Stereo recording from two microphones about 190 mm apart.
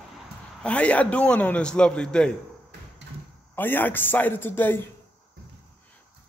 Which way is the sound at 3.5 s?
10° left (ahead or behind).